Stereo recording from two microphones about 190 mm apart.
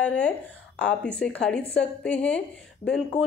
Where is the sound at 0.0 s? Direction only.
5° left (ahead or behind).